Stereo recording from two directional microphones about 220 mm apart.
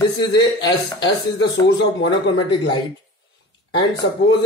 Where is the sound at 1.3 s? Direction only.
50° left (ahead or behind).